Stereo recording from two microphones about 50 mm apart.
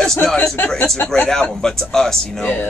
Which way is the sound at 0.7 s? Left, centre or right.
Centre.